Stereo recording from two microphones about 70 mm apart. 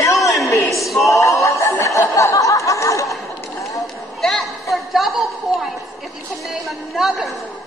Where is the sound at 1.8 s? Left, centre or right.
Left.